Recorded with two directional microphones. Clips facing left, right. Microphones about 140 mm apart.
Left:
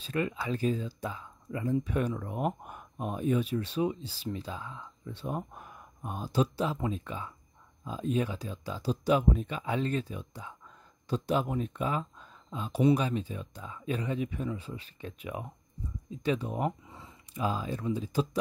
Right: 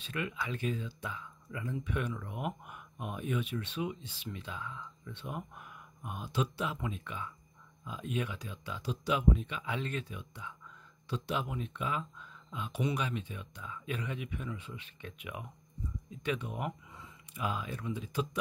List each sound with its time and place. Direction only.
0.0 s speech: 35° left (ahead or behind)